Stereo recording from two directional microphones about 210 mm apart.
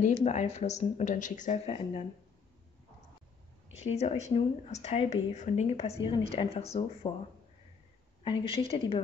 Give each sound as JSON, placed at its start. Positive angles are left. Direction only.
{"t": 0.2, "sound": "speech", "side_deg": 35}
{"t": 3.7, "sound": "speech", "side_deg": 30}
{"t": 8.2, "sound": "speech", "side_deg": 25}